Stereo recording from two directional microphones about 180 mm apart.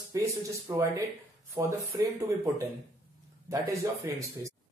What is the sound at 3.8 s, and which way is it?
Speech, 15° right (ahead or behind).